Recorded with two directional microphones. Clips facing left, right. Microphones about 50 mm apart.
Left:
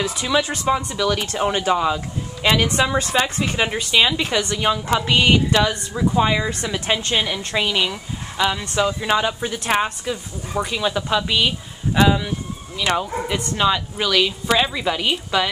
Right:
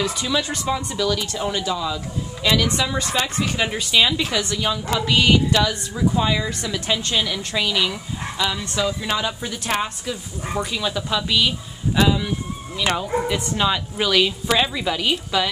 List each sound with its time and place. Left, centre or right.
0.0 s a woman's voice: left
1.0 s speech: left
3.2 s a woman's voice: centre